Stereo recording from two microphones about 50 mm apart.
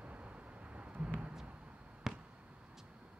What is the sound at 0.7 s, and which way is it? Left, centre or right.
Vehicle, right.